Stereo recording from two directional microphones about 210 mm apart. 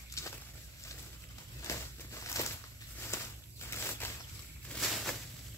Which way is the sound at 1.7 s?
15° left (ahead or behind).